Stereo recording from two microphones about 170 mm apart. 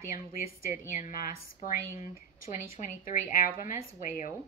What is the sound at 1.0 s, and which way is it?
Speech, 55° left (ahead or behind).